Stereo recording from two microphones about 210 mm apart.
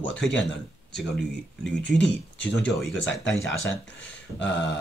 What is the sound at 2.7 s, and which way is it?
Speech, centre (ahead or behind).